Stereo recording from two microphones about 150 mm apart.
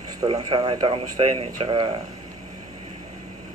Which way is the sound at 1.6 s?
30° right (ahead or behind).